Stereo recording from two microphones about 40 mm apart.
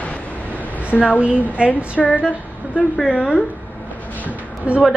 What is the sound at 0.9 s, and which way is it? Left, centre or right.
Speech, centre.